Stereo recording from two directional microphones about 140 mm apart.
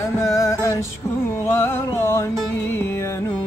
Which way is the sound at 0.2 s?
20° left (ahead or behind).